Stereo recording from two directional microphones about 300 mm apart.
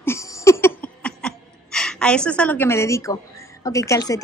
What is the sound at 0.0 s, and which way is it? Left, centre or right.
Laughter, centre.